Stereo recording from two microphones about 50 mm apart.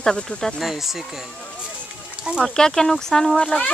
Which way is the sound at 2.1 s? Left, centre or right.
Centre.